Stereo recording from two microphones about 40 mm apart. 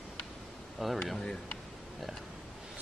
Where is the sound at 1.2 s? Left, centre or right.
Left.